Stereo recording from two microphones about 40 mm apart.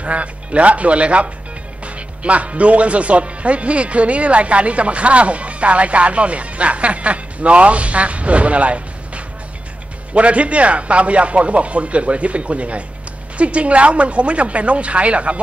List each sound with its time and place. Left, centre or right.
0.0 s speech: right